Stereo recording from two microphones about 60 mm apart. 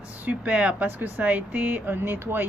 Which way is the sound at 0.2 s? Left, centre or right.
Right.